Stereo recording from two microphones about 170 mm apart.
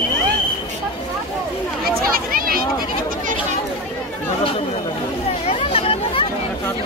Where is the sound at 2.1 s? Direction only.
60° right (ahead or behind).